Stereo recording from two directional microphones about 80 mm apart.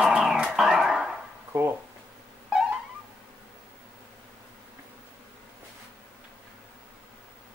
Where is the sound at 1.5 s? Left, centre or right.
Right.